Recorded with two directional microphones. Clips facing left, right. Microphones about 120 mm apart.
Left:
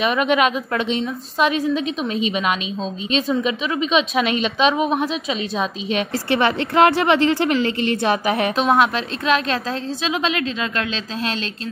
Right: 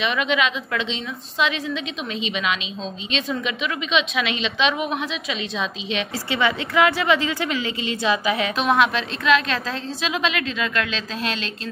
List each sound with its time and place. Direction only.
0.0 s a woman's voice: 45° left (ahead or behind)
6.7 s a woman's voice: 60° left (ahead or behind)
8.5 s a woman's voice: 35° left (ahead or behind)